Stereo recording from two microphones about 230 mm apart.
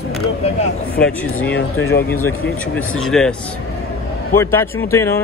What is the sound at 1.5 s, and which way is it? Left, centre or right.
Speech, left.